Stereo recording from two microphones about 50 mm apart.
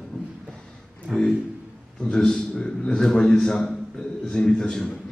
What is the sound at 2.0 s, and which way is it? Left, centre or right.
A man's voice, centre.